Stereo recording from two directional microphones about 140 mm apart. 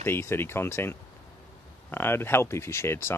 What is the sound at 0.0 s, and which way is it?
Speech, 15° left (ahead or behind).